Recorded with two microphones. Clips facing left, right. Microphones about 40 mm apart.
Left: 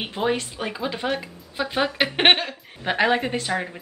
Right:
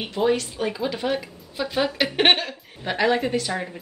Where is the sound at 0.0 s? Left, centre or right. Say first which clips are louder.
Right 2 dB; centre.